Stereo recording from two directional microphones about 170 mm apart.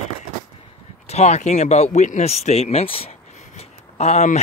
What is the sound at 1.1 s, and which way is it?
Speech, 40° left (ahead or behind).